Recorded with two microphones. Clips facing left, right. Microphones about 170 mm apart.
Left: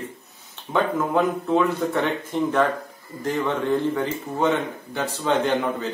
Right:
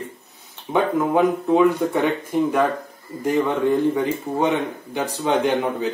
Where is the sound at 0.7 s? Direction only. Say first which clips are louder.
Right 3 dB; 5° right (ahead or behind).